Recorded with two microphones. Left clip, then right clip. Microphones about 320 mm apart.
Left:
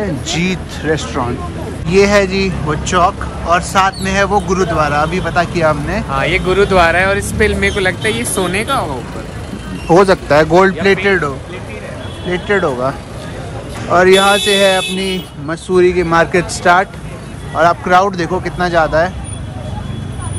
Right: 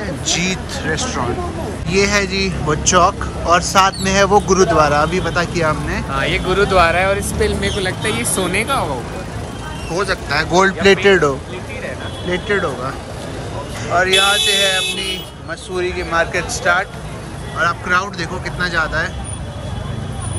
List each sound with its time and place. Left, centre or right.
0.0 s speech: centre
6.1 s speech: centre
7.4 s speech: centre
9.8 s speech: centre
13.9 s speech: centre